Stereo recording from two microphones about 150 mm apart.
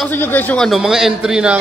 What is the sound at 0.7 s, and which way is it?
Speech, 5° right (ahead or behind).